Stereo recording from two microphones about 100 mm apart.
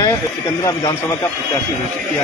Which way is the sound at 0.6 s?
40° left (ahead or behind).